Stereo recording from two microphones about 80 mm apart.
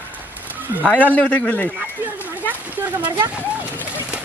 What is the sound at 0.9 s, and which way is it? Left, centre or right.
Speech, centre.